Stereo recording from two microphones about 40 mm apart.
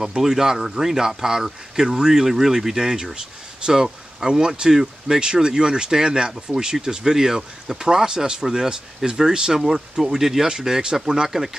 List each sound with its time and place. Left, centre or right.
0.0 s speech: centre